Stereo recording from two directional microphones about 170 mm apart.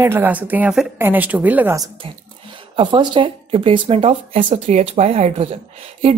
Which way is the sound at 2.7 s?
30° right (ahead or behind).